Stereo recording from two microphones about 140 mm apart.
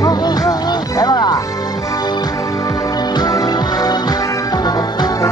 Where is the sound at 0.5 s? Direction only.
30° left (ahead or behind).